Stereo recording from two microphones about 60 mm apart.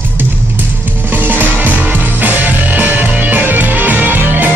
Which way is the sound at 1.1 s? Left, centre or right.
Right.